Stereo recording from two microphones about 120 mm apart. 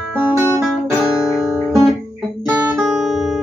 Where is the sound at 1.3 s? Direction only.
25° left (ahead or behind).